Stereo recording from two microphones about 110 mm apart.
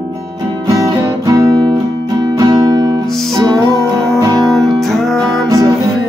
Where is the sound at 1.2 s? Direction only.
35° right (ahead or behind).